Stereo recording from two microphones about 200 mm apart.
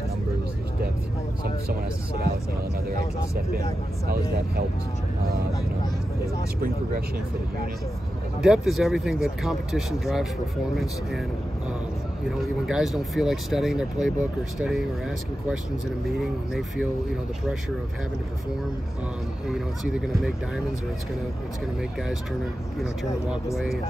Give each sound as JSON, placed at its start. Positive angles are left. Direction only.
{"t": 8.4, "sound": "speech", "side_deg": 0}
{"t": 12.4, "sound": "speech", "side_deg": 0}
{"t": 19.4, "sound": "speech", "side_deg": -5}
{"t": 23.3, "sound": "speech", "side_deg": -5}